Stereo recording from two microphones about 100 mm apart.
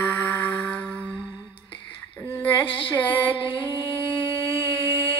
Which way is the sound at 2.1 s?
20° left (ahead or behind).